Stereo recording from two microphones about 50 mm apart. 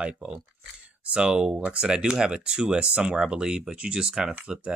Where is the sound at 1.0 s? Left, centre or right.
Right.